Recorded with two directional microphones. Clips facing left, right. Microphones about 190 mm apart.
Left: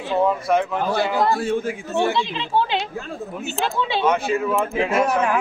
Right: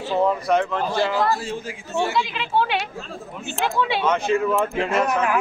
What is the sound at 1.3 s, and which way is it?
Speech, 55° left (ahead or behind).